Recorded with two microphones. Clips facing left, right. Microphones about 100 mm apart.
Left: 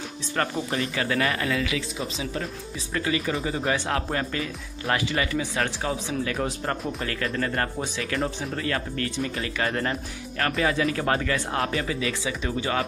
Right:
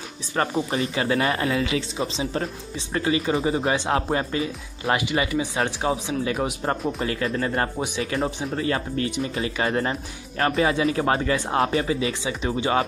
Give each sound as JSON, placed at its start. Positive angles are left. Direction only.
{"t": 0.4, "sound": "speech", "side_deg": -20}
{"t": 0.7, "sound": "speech", "side_deg": -30}